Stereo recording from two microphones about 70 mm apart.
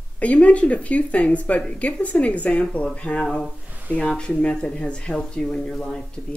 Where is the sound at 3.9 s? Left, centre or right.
Centre.